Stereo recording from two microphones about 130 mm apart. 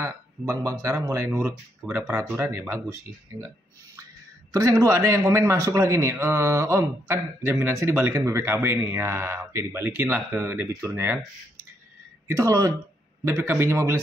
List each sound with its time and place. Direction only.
0.0 s speech: 25° right (ahead or behind)
4.5 s speech: 25° right (ahead or behind)
12.3 s speech: 25° right (ahead or behind)